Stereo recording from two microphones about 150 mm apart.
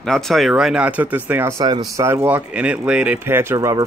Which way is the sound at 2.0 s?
10° right (ahead or behind).